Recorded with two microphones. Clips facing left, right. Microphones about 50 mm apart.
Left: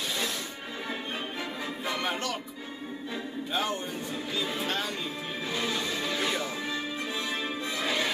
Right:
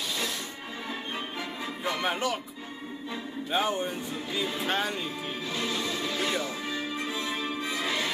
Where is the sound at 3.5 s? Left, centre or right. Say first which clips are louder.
Right 4 dB; centre.